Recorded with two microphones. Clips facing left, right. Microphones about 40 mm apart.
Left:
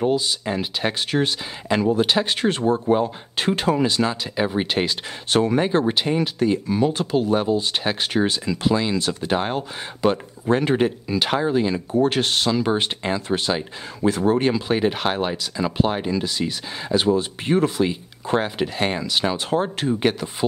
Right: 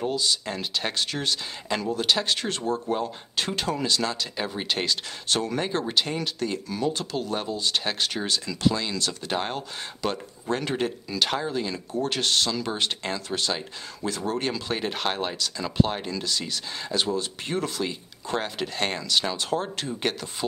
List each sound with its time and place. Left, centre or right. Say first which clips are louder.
0.0 s speech: left 5 dB; centre